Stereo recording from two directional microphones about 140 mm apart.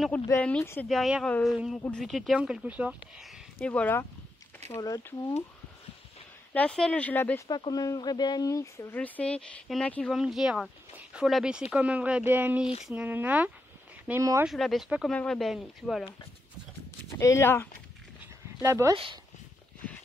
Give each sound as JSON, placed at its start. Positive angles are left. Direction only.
{"t": 0.4, "sound": "speech", "side_deg": 10}
{"t": 0.8, "sound": "speech", "side_deg": 0}
{"t": 4.6, "sound": "speech", "side_deg": 20}
{"t": 6.5, "sound": "speech", "side_deg": 5}
{"t": 7.4, "sound": "speech", "side_deg": 30}
{"t": 8.9, "sound": "speech", "side_deg": 10}
{"t": 10.1, "sound": "speech", "side_deg": -5}
{"t": 17.2, "sound": "speech", "side_deg": 20}
{"t": 18.6, "sound": "speech", "side_deg": -20}